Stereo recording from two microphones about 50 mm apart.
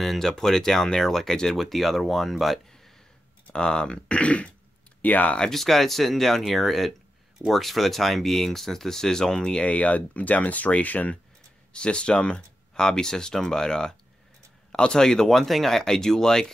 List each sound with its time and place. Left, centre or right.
0.0 s speech: centre
3.5 s speech: centre
5.4 s speech: centre
9.7 s speech: left
11.7 s speech: centre